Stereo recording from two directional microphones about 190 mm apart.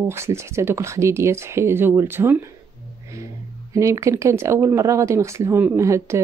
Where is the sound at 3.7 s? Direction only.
15° right (ahead or behind).